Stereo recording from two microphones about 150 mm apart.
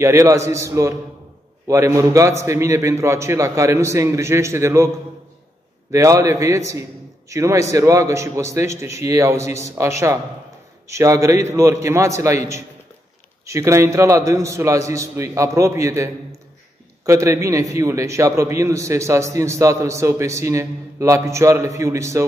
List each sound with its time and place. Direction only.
0.0 s a man's voice: 20° right (ahead or behind)